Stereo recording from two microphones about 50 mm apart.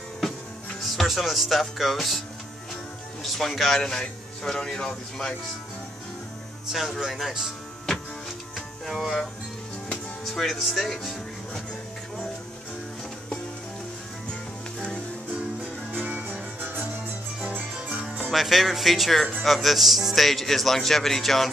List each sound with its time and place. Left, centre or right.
0.8 s speech: centre
3.3 s a man's voice: centre
6.7 s speech: centre
8.5 s music: centre
10.2 s speech: centre
10.9 s music: centre
15.9 s music: right
18.3 s speech: centre